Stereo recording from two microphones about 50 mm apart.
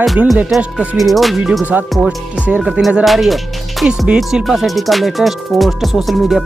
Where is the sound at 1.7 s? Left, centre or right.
Right.